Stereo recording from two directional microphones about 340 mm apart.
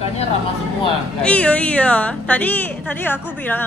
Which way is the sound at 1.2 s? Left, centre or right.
Centre.